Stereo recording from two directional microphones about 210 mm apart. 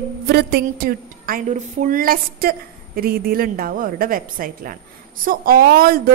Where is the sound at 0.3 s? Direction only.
45° right (ahead or behind).